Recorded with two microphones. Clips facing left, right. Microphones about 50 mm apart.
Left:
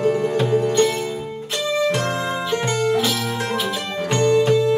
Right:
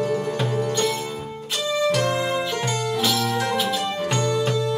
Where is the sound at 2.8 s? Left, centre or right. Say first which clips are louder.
Left 5 dB; left.